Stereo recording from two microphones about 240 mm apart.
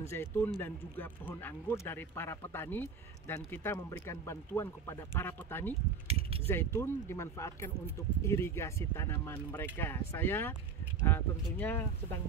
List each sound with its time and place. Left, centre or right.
0.1 s speech: centre
6.0 s speech: right
6.4 s speech: centre